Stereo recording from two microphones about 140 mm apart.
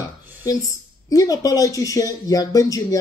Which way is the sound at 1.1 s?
25° left (ahead or behind).